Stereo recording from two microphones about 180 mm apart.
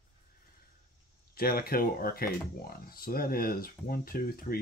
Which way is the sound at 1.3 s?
55° left (ahead or behind).